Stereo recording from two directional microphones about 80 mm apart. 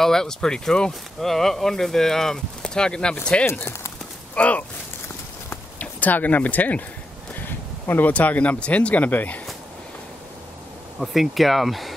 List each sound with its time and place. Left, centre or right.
0.0 s speech: centre
3.4 s speech: left
4.4 s speech: centre
5.5 s a sound: left
7.4 s speech: left
11.0 s speech: centre